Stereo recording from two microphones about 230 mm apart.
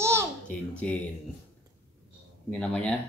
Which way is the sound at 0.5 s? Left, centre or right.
Centre.